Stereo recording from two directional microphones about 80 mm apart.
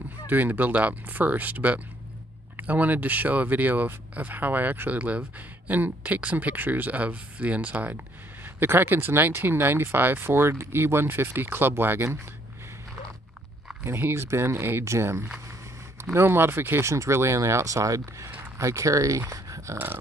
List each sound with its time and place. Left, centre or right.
0.3 s speech: right
13.8 s speech: right